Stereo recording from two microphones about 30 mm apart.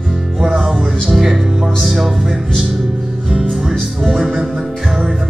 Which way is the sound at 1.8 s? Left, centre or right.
Centre.